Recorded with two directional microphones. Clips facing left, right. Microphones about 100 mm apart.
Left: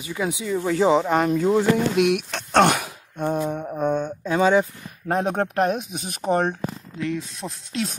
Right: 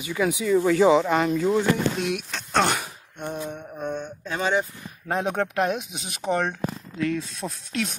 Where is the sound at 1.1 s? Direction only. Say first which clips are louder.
Left 2 dB; 40° left (ahead or behind).